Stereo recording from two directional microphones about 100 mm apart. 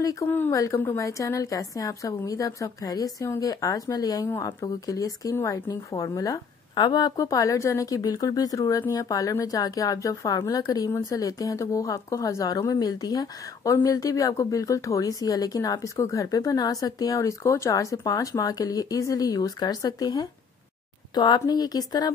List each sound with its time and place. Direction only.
0.0 s speech: 35° left (ahead or behind)
6.7 s speech: 45° left (ahead or behind)